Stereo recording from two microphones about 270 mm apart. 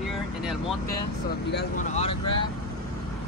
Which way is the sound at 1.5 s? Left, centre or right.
Left.